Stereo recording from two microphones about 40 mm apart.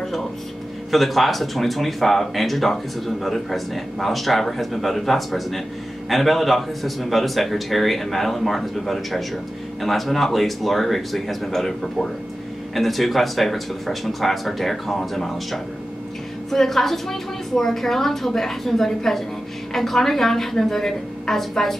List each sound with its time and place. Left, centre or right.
0.0 s music: centre
0.9 s a man's voice: centre